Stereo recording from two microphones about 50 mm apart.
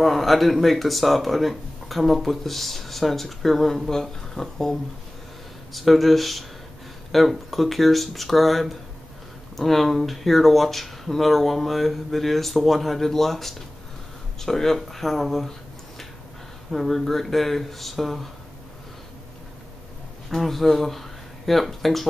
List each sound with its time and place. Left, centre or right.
0.0 s speech: centre
16.7 s speech: centre
20.2 s speech: centre